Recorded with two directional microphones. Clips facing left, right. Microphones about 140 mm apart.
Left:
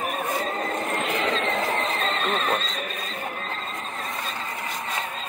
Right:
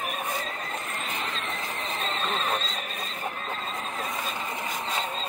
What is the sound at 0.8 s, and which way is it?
Vehicle, 55° left (ahead or behind).